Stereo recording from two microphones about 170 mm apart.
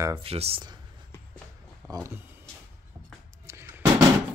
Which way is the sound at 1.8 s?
15° left (ahead or behind).